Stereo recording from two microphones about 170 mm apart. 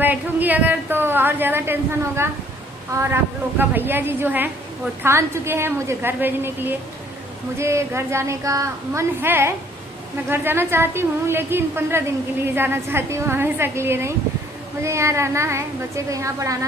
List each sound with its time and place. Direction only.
0.0 s a woman's voice: 10° right (ahead or behind)